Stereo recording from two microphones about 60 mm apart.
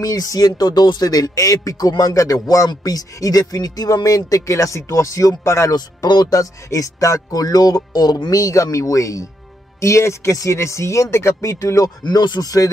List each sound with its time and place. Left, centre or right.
0.0 s speech: left
5.7 s speech: left
9.8 s speech: left